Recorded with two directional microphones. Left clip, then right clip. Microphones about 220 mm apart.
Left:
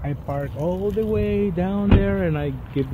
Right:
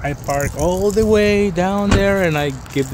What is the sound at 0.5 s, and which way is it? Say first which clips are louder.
Speech: right 6 dB; 40° right (ahead or behind).